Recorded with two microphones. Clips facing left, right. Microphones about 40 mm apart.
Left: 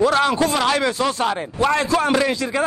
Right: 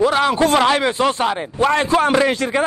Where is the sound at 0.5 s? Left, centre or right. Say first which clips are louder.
Right 4 dB; right.